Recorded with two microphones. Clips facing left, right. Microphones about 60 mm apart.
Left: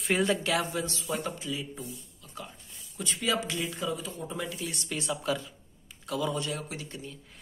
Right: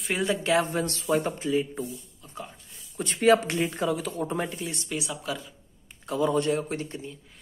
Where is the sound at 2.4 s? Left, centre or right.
Right.